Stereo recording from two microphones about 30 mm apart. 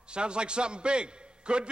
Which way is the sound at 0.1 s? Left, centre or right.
Right.